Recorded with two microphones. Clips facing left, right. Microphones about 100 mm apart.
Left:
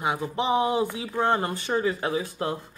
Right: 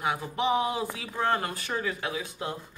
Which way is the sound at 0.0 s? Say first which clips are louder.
Left 2 dB; 25° left (ahead or behind).